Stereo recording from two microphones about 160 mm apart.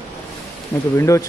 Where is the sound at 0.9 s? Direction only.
20° left (ahead or behind).